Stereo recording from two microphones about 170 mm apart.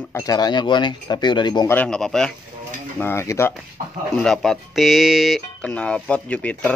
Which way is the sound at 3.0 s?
15° left (ahead or behind).